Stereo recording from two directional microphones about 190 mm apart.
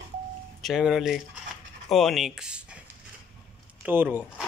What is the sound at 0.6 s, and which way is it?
Speech, centre (ahead or behind).